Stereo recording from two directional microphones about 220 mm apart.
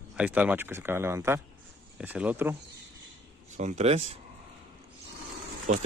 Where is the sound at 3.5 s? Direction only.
35° right (ahead or behind).